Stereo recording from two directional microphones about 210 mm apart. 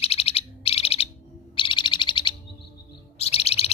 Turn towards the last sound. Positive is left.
turn(degrees=30)  # may be behind; listen again after turning